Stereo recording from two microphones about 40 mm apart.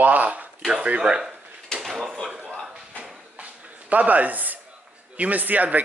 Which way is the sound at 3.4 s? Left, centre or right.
Right.